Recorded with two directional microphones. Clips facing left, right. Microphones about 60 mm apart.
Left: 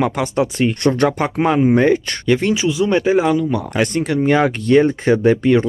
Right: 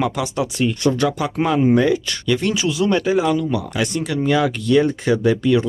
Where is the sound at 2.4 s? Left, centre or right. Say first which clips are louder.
Left 2 dB; left.